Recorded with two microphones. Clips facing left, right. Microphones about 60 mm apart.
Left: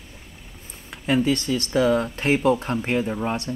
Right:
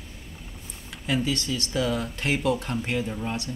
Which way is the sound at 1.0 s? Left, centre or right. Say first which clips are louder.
Left 6 dB; left.